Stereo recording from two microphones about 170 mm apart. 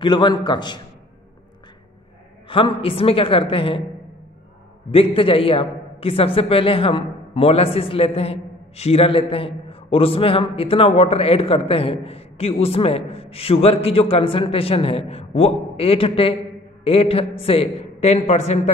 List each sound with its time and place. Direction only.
0.0 s a man's voice: 25° left (ahead or behind)
2.4 s a man's voice: 30° left (ahead or behind)
4.9 s a man's voice: 35° left (ahead or behind)